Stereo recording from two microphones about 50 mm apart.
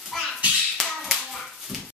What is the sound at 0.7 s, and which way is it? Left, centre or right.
Hands, centre.